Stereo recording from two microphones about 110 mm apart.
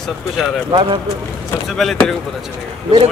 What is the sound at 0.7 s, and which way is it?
Speech, 60° right (ahead or behind).